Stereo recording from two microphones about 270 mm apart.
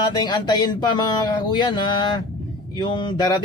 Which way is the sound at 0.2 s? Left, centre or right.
Centre.